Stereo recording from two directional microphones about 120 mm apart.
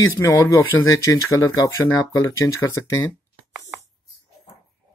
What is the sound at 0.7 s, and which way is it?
Speech, 25° left (ahead or behind).